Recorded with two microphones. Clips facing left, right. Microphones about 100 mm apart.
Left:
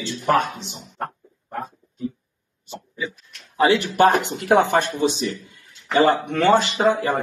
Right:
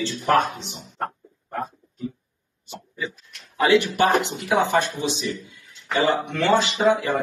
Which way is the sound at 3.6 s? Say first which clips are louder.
Left 2 dB; 35° left (ahead or behind).